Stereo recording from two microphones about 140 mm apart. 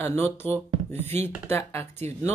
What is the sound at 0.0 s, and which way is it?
Speech, 15° left (ahead or behind).